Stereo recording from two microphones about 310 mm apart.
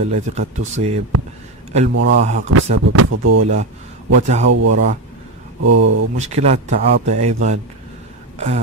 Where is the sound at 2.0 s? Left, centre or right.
Right.